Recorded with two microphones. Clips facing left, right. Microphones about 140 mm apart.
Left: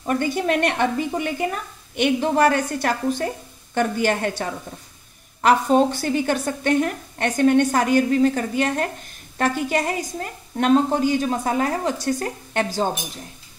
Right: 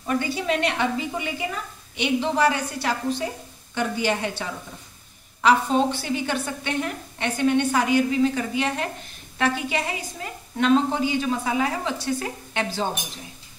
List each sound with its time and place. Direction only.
0.0 s a woman's voice: 50° left (ahead or behind)